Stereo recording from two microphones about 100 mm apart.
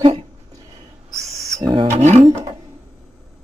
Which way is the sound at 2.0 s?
90° right.